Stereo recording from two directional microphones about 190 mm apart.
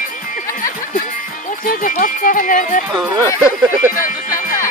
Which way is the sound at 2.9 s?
20° right (ahead or behind).